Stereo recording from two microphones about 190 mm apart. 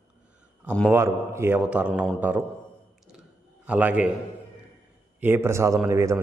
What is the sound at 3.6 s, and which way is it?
Speech, 10° right (ahead or behind).